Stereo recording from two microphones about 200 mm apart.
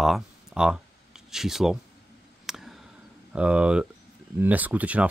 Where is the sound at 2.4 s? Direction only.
Centre (ahead or behind).